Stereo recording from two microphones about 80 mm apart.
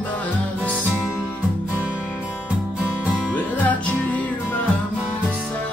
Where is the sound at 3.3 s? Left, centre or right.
Left.